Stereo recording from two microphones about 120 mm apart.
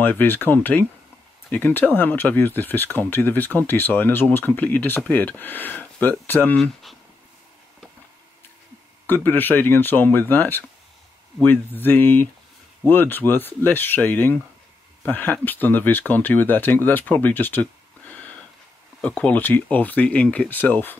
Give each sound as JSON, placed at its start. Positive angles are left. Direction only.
{"t": 0.0, "sound": "speech", "side_deg": 15}
{"t": 6.5, "sound": "speech", "side_deg": 0}
{"t": 9.0, "sound": "speech", "side_deg": 15}